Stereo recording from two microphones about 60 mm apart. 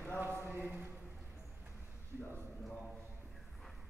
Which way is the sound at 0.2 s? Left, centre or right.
Right.